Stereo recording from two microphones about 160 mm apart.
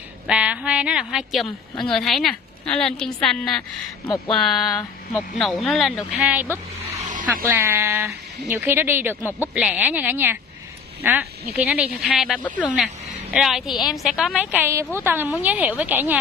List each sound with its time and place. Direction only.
0.3 s a woman's voice: 5° right (ahead or behind)
6.9 s vehicle: 50° right (ahead or behind)
7.4 s speech: 15° right (ahead or behind)
12.4 s speech: 10° left (ahead or behind)
12.7 s a woman's voice: 5° right (ahead or behind)